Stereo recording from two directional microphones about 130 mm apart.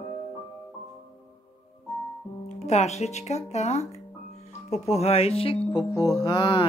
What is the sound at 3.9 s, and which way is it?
Music, 60° left (ahead or behind).